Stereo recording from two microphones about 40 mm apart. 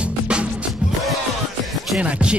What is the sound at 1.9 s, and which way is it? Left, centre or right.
Speech, right.